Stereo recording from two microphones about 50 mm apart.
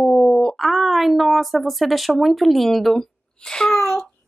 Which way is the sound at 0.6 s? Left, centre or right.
Centre.